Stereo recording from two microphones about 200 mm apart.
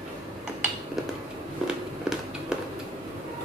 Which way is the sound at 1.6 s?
5° right (ahead or behind).